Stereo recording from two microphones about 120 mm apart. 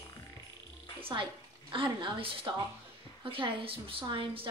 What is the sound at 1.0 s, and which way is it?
Speech, 45° right (ahead or behind).